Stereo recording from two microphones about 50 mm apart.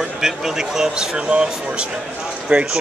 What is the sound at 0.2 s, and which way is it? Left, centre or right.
Speech, centre.